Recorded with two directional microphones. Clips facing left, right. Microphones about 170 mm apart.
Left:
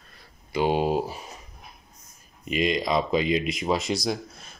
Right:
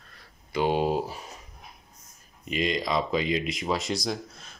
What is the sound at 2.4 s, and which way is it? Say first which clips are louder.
Speech: left 3 dB; 15° left (ahead or behind).